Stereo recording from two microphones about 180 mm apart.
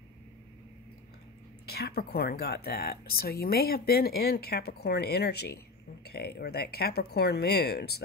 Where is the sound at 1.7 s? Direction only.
60° left (ahead or behind).